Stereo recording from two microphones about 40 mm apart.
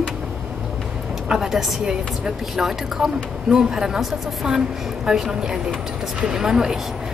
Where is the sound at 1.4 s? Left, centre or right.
Centre.